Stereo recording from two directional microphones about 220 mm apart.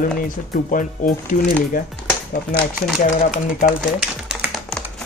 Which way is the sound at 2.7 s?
5° right (ahead or behind).